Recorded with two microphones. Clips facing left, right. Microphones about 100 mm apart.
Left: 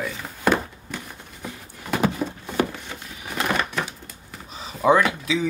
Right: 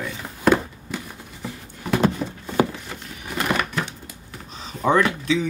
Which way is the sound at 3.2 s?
Centre (ahead or behind).